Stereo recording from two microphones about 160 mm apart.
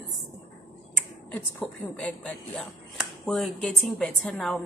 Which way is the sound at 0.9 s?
10° left (ahead or behind).